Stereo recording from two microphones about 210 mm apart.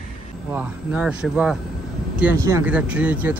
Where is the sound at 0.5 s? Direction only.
5° right (ahead or behind).